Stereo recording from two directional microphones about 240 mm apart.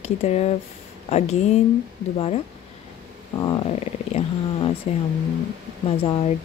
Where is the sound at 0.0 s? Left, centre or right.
Left.